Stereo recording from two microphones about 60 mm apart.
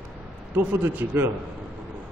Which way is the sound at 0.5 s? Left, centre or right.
Right.